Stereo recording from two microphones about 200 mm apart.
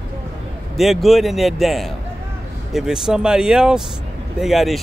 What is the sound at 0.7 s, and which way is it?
Speech, centre (ahead or behind).